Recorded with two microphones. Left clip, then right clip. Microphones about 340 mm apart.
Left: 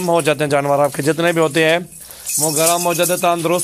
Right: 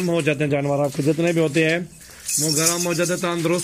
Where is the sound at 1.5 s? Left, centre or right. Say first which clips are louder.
Left 5 dB; centre.